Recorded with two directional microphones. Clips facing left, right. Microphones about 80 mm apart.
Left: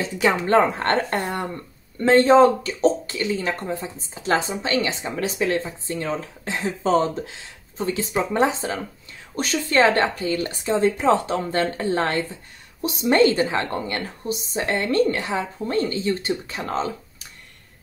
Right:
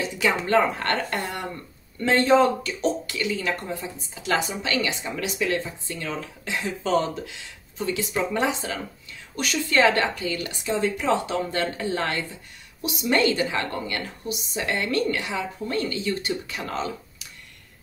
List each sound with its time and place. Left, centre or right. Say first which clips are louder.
0.0 s speech: left 3 dB; left